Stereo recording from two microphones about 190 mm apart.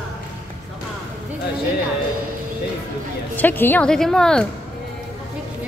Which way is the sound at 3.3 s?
10° left (ahead or behind).